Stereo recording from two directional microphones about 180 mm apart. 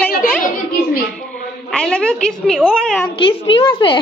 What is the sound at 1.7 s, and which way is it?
A woman's voice, 5° left (ahead or behind).